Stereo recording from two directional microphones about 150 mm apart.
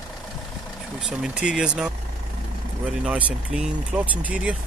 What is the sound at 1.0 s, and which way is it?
Speech, 5° right (ahead or behind).